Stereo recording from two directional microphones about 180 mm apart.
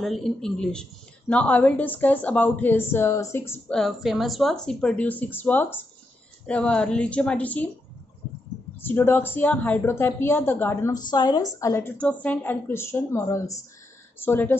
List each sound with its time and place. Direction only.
0.0 s speech: centre (ahead or behind)
8.8 s a woman's voice: 10° left (ahead or behind)